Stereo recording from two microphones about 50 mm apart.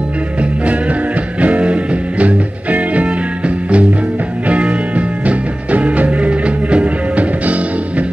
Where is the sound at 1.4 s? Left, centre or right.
Right.